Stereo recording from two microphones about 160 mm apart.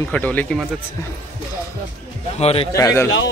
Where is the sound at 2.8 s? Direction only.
20° left (ahead or behind).